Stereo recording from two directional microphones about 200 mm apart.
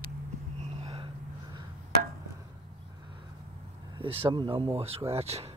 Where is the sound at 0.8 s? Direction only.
30° right (ahead or behind).